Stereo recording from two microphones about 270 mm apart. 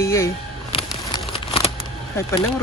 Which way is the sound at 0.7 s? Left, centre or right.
Centre.